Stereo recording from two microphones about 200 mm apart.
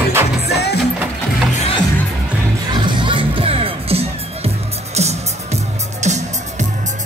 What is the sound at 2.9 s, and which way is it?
Music, 25° right (ahead or behind).